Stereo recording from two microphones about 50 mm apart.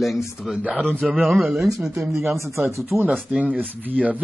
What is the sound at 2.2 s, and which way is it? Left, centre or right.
Speech, right.